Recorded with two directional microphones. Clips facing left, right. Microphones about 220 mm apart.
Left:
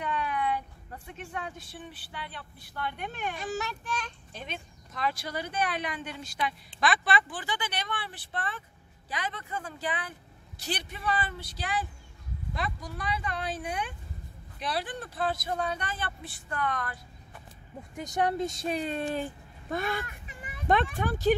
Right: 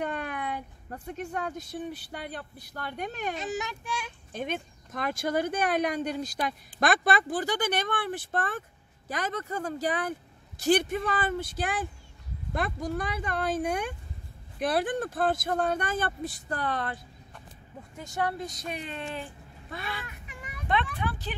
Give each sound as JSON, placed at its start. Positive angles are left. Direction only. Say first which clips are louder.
{"t": 0.0, "sound": "a woman's voice", "louder": "left 1 dB", "side_deg": -45}
{"t": 3.3, "sound": "a child's voice", "louder": "right 1 dB", "side_deg": -15}
{"t": 4.3, "sound": "speech", "louder": "right 8 dB", "side_deg": -50}
{"t": 17.9, "sound": "speech", "louder": "left 3 dB", "side_deg": 20}